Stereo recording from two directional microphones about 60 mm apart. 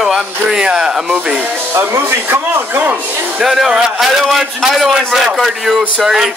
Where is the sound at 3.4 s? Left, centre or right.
Centre.